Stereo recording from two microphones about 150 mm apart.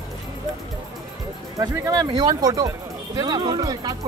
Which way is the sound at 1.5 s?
25° right (ahead or behind).